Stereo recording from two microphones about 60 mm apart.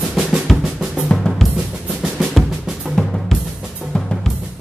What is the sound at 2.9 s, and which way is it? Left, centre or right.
Drum, centre.